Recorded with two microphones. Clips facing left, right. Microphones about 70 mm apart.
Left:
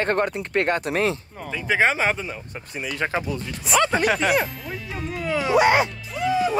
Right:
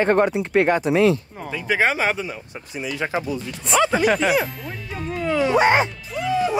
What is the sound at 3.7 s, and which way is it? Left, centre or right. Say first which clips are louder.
Speech: right 2 dB; centre.